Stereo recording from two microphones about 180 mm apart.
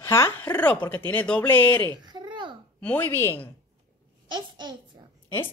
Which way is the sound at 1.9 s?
25° right (ahead or behind).